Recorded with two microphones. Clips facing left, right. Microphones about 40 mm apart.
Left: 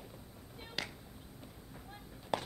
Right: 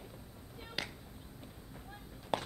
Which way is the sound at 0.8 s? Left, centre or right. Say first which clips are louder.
Even; centre.